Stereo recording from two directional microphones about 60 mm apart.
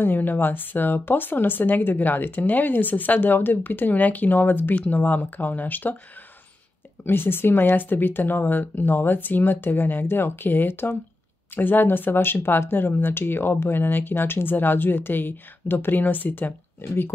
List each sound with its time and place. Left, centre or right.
0.0 s speech: left
7.1 s speech: left